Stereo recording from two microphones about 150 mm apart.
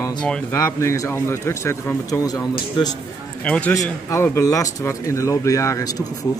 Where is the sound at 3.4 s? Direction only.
10° left (ahead or behind).